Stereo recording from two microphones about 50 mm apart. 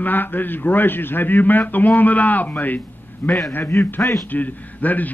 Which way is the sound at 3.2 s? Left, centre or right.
Left.